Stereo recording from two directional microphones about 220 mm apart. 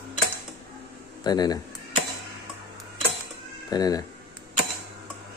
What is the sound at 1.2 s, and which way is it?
Speech, 20° left (ahead or behind).